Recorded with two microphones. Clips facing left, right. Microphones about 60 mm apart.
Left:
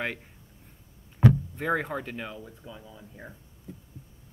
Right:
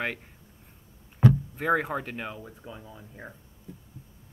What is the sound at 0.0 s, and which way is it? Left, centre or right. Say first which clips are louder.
Speech: right 1 dB; centre.